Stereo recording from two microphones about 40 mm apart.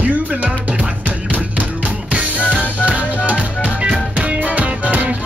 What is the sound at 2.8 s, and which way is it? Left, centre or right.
Music, right.